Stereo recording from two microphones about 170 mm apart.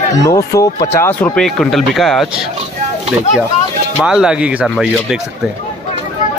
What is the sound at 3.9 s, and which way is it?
Speech, 5° right (ahead or behind).